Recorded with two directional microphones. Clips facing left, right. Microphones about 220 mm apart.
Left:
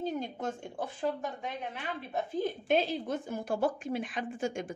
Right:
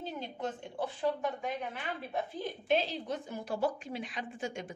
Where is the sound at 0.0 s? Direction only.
45° left (ahead or behind).